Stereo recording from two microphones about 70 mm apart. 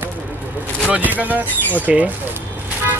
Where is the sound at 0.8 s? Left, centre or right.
Right.